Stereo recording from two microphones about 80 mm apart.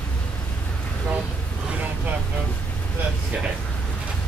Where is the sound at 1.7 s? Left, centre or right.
Right.